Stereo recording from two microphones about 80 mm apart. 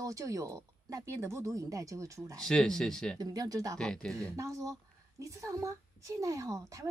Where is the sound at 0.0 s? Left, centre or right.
Right.